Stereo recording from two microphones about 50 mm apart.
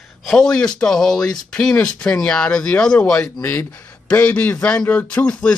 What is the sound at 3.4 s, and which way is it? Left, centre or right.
Speech, left.